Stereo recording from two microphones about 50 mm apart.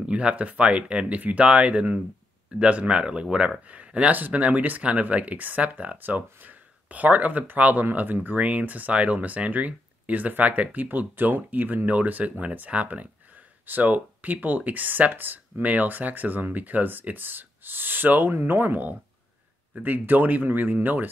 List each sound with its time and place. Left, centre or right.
0.0 s speech: right
5.9 s speech: right
8.4 s speech: right